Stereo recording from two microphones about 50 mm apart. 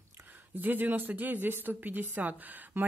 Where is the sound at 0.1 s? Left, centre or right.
Right.